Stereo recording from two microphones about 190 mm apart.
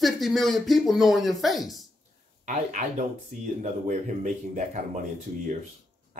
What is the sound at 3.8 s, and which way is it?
Speech, 45° right (ahead or behind).